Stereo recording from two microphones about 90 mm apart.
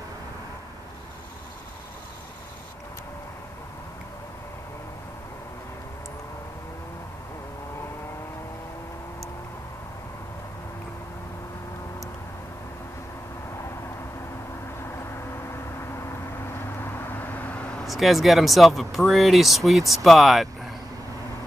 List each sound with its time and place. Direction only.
16.8 s vehicle: 25° left (ahead or behind)
17.8 s speech: centre (ahead or behind)